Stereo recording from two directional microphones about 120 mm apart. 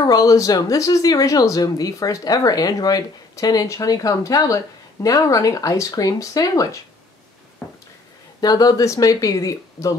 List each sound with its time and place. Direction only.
0.0 s speech: 30° left (ahead or behind)
7.6 s a sound: 10° left (ahead or behind)
8.4 s speech: 35° left (ahead or behind)